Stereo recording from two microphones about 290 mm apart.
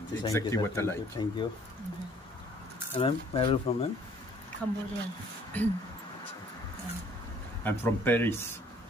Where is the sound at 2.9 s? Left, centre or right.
Centre.